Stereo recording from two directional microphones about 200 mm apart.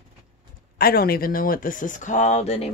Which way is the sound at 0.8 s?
50° left (ahead or behind).